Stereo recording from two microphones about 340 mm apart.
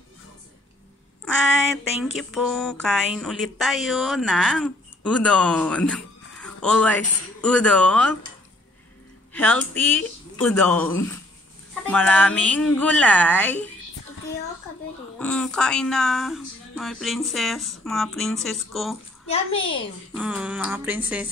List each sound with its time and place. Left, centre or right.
2.1 s speech: centre
9.3 s speech: centre
15.1 s speech: centre
19.3 s a child's voice: centre
20.2 s speech: centre